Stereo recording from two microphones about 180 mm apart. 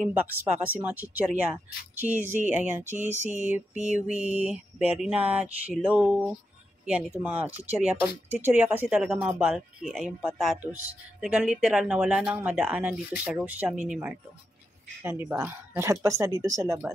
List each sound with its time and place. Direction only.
0.1 s speech: 10° right (ahead or behind)